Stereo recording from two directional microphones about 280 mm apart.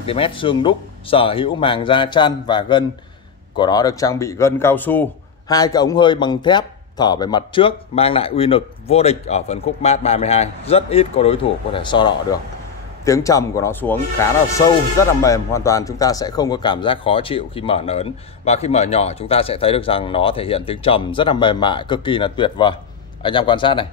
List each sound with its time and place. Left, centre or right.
0.0 s speech: centre